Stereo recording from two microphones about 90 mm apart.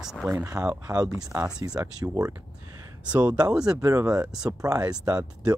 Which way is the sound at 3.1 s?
15° right (ahead or behind).